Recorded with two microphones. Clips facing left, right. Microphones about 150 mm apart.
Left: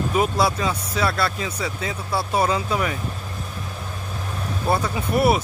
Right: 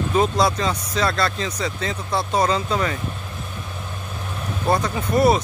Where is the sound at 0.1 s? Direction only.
5° left (ahead or behind).